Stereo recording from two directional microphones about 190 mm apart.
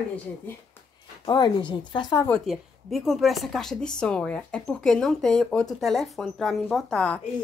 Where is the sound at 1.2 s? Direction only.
25° left (ahead or behind).